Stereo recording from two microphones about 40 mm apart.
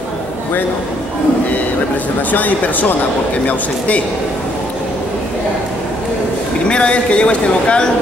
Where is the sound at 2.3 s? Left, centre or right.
Left.